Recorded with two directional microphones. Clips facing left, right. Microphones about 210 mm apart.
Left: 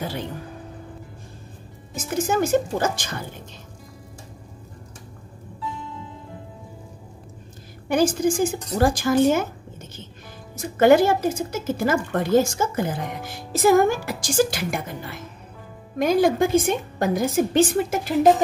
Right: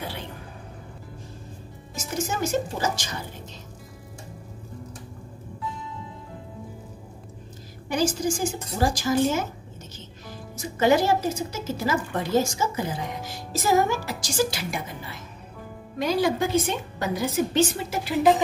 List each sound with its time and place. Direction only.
2.0 s a woman's voice: 55° left (ahead or behind)
7.9 s a woman's voice: 55° left (ahead or behind)
10.5 s speech: 55° left (ahead or behind)